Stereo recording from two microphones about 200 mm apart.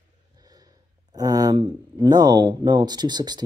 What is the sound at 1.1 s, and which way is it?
Speech, 20° right (ahead or behind).